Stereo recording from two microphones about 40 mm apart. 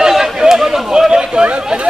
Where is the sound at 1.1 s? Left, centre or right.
Right.